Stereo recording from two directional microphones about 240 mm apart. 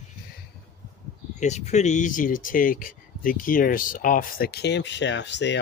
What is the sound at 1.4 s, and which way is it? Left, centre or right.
Speech, left.